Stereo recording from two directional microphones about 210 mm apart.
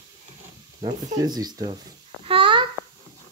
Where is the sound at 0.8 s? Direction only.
20° right (ahead or behind).